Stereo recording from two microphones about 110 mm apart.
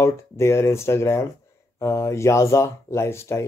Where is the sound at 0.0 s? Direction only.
25° left (ahead or behind).